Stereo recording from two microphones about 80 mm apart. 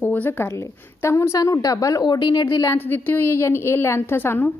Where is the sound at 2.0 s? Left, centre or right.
Left.